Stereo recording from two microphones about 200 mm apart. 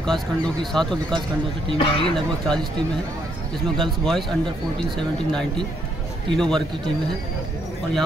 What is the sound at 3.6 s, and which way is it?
Speech, centre (ahead or behind).